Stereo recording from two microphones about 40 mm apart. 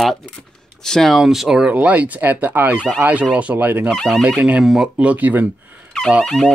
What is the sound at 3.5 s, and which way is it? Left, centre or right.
Speech, right.